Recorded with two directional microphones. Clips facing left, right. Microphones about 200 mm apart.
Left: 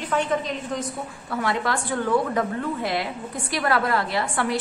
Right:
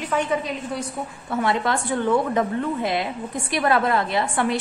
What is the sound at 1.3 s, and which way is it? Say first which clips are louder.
A woman's voice: right 3 dB; 25° right (ahead or behind).